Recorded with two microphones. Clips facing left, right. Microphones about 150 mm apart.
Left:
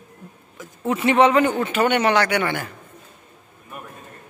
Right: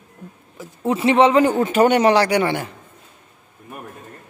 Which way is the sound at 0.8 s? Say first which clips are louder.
Right 2 dB; 30° right (ahead or behind).